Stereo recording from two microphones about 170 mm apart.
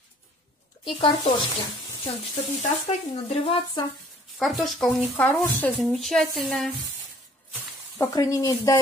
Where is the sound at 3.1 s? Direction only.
35° left (ahead or behind).